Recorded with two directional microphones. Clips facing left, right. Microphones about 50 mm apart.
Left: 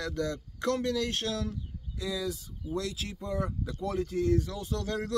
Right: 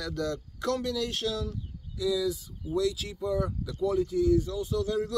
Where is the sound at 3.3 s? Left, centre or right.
Left.